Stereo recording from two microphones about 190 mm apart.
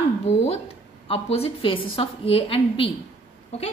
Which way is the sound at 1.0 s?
30° left (ahead or behind).